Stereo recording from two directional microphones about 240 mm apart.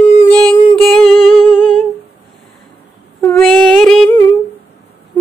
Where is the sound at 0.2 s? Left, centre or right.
Centre.